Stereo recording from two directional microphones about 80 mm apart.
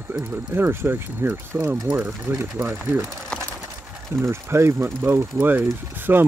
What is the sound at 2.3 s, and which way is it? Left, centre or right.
Speech, right.